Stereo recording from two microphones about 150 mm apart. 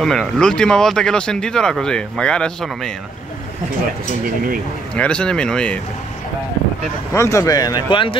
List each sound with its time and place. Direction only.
0.0 s speech: 5° left (ahead or behind)
4.9 s speech: 5° left (ahead or behind)
7.1 s speech: 20° left (ahead or behind)